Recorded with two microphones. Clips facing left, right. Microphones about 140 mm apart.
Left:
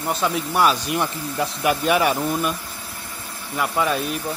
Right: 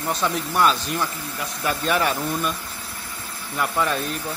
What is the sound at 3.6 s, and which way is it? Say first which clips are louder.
Speech: left 1 dB; 5° left (ahead or behind).